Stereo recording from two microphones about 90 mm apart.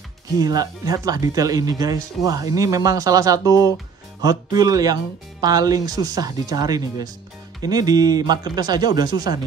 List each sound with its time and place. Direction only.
0.4 s speech: 45° right (ahead or behind)